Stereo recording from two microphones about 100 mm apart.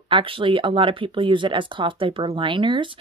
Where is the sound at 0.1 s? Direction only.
60° right (ahead or behind).